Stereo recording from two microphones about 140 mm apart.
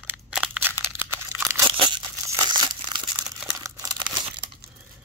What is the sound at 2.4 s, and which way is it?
Crumpling, 30° right (ahead or behind).